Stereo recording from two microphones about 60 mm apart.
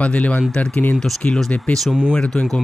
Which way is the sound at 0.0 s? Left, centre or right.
Left.